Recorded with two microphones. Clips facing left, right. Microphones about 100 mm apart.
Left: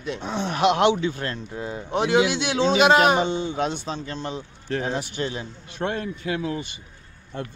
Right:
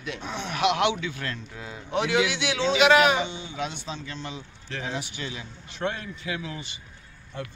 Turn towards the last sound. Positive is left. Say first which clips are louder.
# left 7 dB
turn(degrees=45)  # may be behind; listen again after turning